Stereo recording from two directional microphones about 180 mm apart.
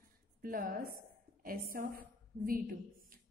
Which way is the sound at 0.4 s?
55° right (ahead or behind).